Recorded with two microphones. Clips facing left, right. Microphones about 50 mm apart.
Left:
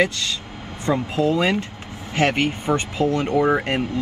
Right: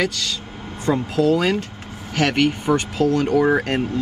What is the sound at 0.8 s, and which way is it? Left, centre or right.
Speech, left.